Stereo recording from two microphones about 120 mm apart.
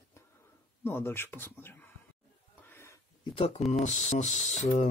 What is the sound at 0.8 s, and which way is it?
Speech, 20° left (ahead or behind).